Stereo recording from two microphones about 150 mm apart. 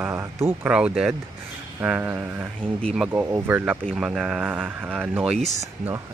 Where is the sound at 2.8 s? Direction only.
Centre (ahead or behind).